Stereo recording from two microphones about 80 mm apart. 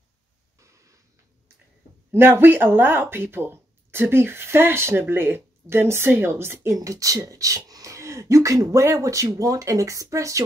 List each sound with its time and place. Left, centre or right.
0.6 s a sound: right
2.1 s speech: right
6.8 s speech: right